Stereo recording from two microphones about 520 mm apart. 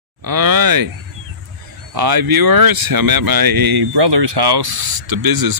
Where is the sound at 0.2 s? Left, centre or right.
Right.